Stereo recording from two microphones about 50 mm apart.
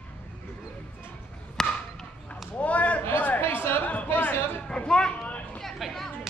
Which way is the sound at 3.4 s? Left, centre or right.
Left.